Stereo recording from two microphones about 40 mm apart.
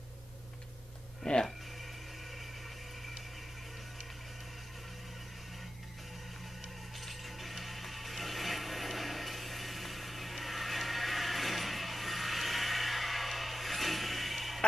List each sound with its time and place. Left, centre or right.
1.2 s speech: left
7.0 s ratchet: centre